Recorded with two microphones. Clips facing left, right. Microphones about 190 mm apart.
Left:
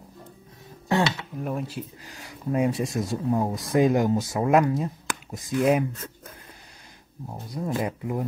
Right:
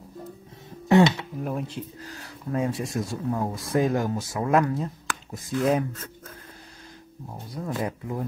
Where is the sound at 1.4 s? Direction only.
Centre (ahead or behind).